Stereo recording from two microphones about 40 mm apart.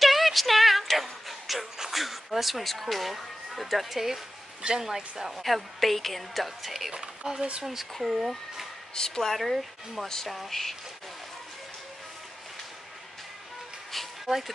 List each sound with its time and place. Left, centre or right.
0.0 s music: centre
1.8 s speech: centre
5.4 s a woman's voice: centre
6.9 s a woman's voice: centre
8.9 s speech: centre
9.4 s a woman's voice: centre
10.0 s a woman's voice: centre
13.9 s music: centre